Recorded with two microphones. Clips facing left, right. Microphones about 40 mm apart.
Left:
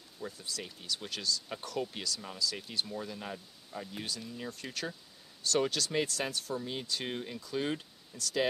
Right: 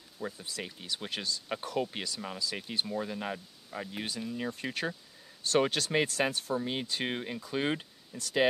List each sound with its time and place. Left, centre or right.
0.2 s speech: right